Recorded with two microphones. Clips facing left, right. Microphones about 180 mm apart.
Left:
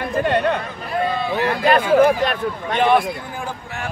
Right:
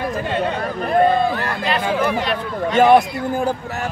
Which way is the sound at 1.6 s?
50° left (ahead or behind).